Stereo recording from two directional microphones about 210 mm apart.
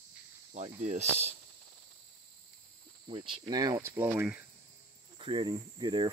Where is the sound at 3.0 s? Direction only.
25° right (ahead or behind); by 4.4 s 10° right (ahead or behind).